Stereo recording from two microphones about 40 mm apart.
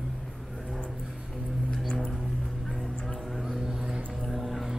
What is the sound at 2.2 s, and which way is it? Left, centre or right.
Music, centre.